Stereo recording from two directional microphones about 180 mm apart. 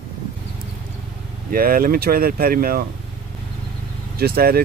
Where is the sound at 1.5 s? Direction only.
55° right (ahead or behind).